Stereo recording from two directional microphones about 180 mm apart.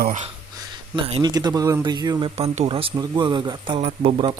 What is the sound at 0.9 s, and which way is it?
Speech, 25° right (ahead or behind).